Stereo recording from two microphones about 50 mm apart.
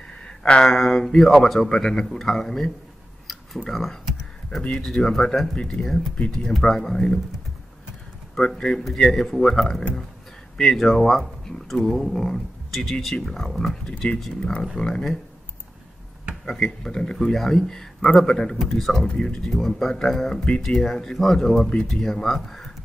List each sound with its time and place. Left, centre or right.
0.1 s speech: left; by 5.5 s centre
5.5 s speech: centre
8.4 s speech: centre
14.3 s speech: centre
16.4 s speech: centre